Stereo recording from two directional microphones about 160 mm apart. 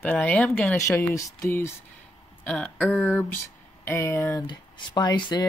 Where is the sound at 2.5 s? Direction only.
5° left (ahead or behind).